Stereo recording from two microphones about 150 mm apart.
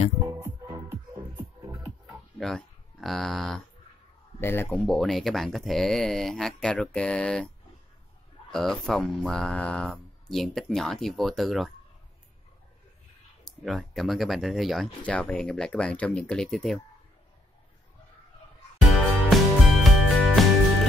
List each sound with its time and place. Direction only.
0.4 s music: 20° right (ahead or behind)
2.0 s a sound: centre (ahead or behind)
4.4 s speech: 15° left (ahead or behind)
4.8 s speech: centre (ahead or behind)
8.5 s speech: 5° left (ahead or behind)
13.4 s speech: 5° left (ahead or behind)
19.2 s music: centre (ahead or behind)